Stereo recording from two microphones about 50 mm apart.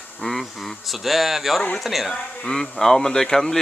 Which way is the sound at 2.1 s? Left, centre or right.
Centre.